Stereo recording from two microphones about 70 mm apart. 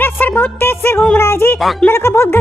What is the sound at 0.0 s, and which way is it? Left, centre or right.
Music, left.